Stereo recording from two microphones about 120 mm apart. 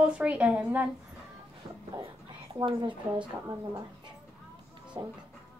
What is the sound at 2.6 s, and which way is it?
Speech, 40° right (ahead or behind).